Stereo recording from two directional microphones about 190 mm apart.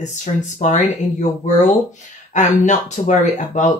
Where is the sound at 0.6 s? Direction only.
40° left (ahead or behind).